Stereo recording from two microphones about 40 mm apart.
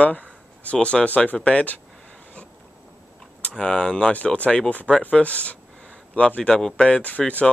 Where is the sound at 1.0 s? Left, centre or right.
Left.